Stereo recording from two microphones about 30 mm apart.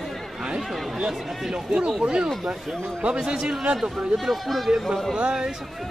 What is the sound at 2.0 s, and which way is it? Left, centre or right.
Speech, right.